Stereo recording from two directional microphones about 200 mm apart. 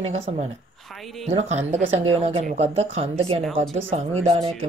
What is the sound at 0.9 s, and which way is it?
Speech, centre (ahead or behind).